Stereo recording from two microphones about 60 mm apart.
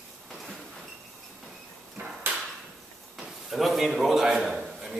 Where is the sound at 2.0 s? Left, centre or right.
Right.